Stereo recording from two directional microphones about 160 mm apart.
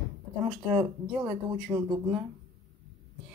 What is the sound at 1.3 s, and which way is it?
Speech, 20° right (ahead or behind).